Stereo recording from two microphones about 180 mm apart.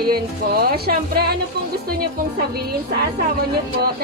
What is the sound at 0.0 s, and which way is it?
Music, 60° right (ahead or behind).